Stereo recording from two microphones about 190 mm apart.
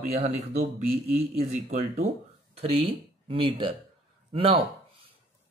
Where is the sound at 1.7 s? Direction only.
35° right (ahead or behind).